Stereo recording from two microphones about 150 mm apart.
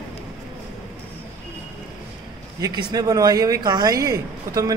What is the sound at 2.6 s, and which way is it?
Speech, 25° right (ahead or behind).